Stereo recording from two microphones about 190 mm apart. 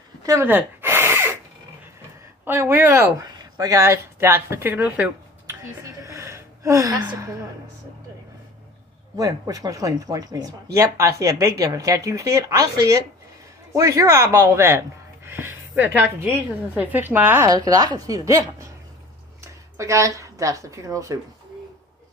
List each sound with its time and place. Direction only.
0.2 s a sound: 15° right (ahead or behind)
2.4 s speech: 15° right (ahead or behind)
9.1 s speech: 20° right (ahead or behind)